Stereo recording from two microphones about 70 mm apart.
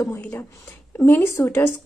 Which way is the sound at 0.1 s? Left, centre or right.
Left.